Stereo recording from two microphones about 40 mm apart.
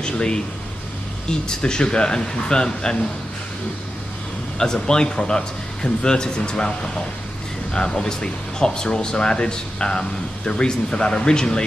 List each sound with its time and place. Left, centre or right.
0.0 s speech: left
4.6 s speech: centre